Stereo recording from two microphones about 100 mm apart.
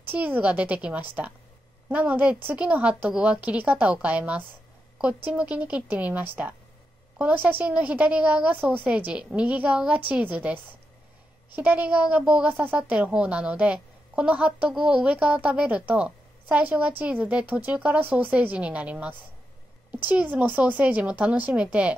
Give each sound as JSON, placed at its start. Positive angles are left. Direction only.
{"t": 0.0, "sound": "a woman's voice", "side_deg": -20}